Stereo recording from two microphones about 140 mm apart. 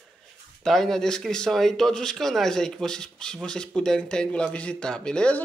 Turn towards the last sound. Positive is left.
turn(degrees=5)  # may be behind; listen again after turning